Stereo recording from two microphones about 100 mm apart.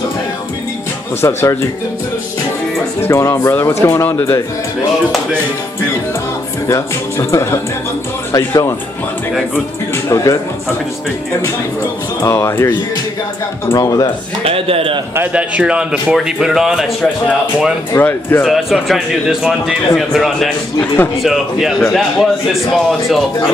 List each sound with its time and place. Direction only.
1.2 s speech: 30° left (ahead or behind)
3.0 s speech: 25° left (ahead or behind)
6.7 s speech: 30° left (ahead or behind)
10.0 s speech: 30° left (ahead or behind)
12.2 s speech: 30° left (ahead or behind)
13.7 s speech: 40° left (ahead or behind)
14.4 s a man's voice: 70° right (ahead or behind)
15.3 s speech: 10° right (ahead or behind)
17.9 s speech: 30° left (ahead or behind)
18.4 s a man's voice: centre (ahead or behind)
20.8 s speech: 20° left (ahead or behind)
21.2 s a man's voice: centre (ahead or behind)